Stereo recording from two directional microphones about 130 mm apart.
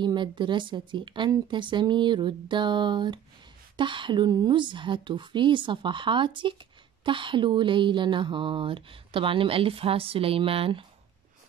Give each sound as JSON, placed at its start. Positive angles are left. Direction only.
{"t": 0.0, "sound": "speech", "side_deg": -35}